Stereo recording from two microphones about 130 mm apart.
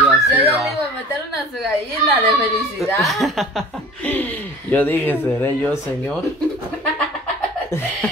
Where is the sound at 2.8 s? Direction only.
Centre (ahead or behind).